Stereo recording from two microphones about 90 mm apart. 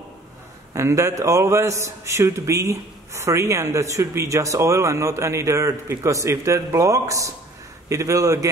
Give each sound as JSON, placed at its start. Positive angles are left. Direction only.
{"t": 0.7, "sound": "a man's voice", "side_deg": -35}